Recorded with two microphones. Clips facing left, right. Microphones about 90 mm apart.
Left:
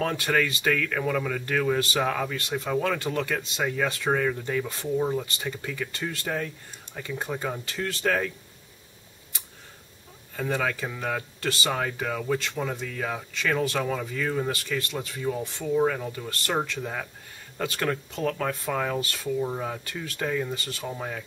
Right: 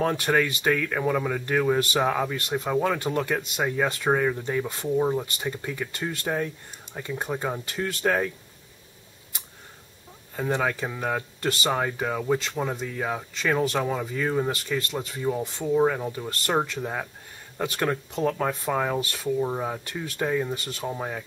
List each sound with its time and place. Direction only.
0.3 s speech: 15° right (ahead or behind)
10.3 s speech: 15° right (ahead or behind)